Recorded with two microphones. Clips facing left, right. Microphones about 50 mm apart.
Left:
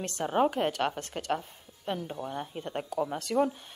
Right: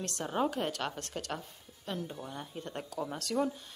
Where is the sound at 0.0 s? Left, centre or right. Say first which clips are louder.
Left 6 dB; left.